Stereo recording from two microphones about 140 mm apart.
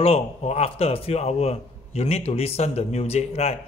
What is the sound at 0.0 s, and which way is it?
Speech, 45° left (ahead or behind).